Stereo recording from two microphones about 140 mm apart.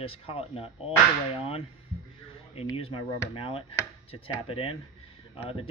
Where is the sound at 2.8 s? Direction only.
40° left (ahead or behind).